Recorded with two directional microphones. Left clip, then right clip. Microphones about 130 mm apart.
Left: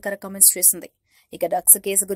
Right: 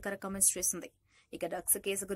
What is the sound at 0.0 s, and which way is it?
Speech, 30° left (ahead or behind).